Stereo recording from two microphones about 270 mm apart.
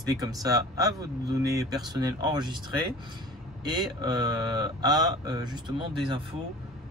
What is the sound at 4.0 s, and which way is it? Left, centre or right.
Speech, centre.